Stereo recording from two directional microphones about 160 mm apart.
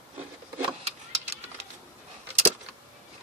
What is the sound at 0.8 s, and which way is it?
Vehicle, 40° right (ahead or behind).